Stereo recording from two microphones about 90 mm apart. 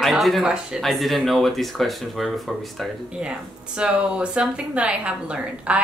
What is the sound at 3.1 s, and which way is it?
Speech, 10° right (ahead or behind).